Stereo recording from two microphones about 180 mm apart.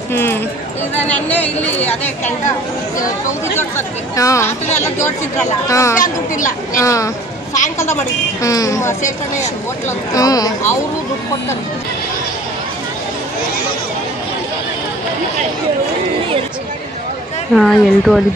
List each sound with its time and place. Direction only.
0.1 s speech: 15° left (ahead or behind)
3.5 s speech: 15° left (ahead or behind)
5.7 s speech: 15° left (ahead or behind)
17.6 s speech: centre (ahead or behind)